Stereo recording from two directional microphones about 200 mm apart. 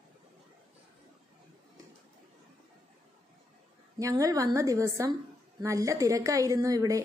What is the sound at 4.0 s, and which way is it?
A woman's voice, 15° right (ahead or behind).